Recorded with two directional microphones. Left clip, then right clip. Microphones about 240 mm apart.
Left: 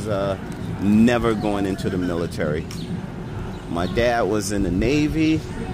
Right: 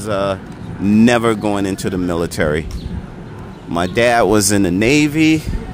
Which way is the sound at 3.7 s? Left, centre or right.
Right.